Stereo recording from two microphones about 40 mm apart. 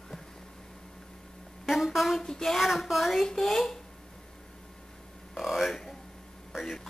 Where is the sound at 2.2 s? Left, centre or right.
Centre.